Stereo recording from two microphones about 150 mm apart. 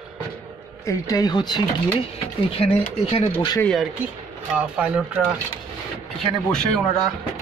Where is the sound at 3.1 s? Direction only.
30° left (ahead or behind).